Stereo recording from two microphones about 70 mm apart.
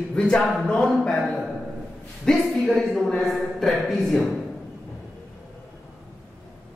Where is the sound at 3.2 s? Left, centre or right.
Centre.